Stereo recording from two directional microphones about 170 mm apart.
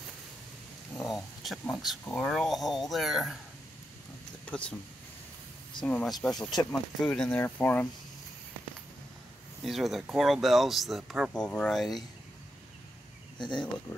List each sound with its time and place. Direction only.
0.9 s a sound: centre (ahead or behind)
2.0 s speech: centre (ahead or behind)
4.5 s speech: 5° left (ahead or behind)
5.9 s speech: 5° left (ahead or behind)
9.6 s speech: centre (ahead or behind)
13.4 s speech: 25° left (ahead or behind)
13.9 s speech: 15° left (ahead or behind)